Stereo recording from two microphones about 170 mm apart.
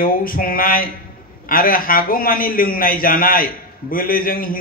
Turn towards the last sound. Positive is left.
turn(degrees=55)  # may be behind; listen again after turning